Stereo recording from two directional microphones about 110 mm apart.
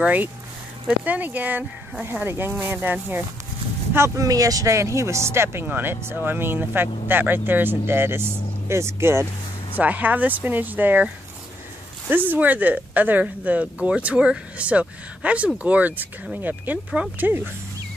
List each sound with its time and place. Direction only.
0.0 s speech: 15° right (ahead or behind)
12.1 s speech: 15° right (ahead or behind)